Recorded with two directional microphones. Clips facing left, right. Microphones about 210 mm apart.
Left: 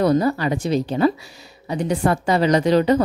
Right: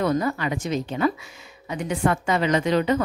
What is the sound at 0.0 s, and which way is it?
A woman's voice, 35° left (ahead or behind).